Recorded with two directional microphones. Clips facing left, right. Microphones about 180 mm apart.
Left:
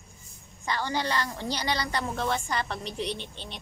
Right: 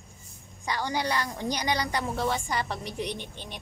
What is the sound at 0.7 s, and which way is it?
A woman's voice, 15° right (ahead or behind).